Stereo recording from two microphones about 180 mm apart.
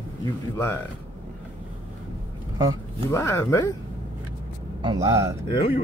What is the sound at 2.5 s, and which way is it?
Speech, 20° right (ahead or behind).